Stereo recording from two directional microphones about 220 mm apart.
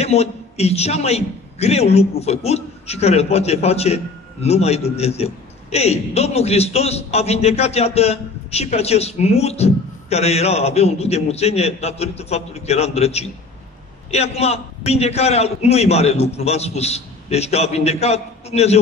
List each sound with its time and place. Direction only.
0.0 s a man's voice: 30° left (ahead or behind)